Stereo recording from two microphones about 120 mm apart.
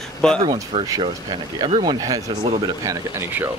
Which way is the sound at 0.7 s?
60° right (ahead or behind).